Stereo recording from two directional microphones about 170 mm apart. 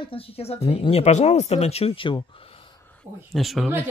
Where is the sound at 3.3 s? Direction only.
Centre (ahead or behind).